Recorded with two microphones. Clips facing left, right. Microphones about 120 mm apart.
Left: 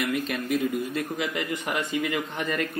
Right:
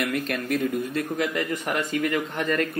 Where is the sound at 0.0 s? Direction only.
Centre (ahead or behind).